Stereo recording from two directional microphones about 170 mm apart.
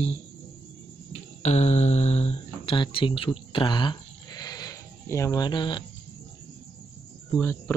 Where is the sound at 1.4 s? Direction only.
40° left (ahead or behind).